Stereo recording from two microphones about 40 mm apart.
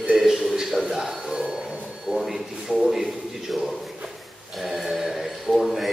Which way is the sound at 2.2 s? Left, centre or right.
Centre.